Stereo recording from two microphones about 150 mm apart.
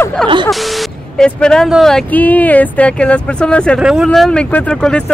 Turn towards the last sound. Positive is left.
turn(degrees=5)  # may be behind; listen again after turning